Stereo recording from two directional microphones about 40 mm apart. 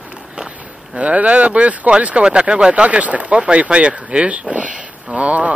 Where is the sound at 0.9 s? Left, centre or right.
Right.